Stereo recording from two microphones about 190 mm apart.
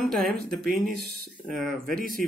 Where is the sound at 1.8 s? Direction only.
45° right (ahead or behind).